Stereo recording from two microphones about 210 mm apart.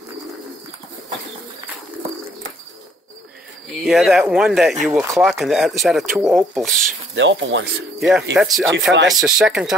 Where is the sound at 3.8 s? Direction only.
Centre (ahead or behind).